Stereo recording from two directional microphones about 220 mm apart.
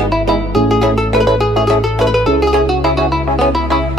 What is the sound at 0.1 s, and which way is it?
Music, centre (ahead or behind).